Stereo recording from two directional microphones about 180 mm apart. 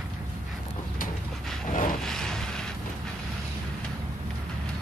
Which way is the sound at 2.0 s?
5° left (ahead or behind).